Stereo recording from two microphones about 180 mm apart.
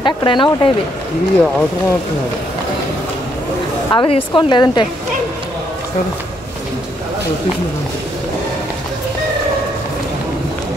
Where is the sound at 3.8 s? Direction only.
25° left (ahead or behind).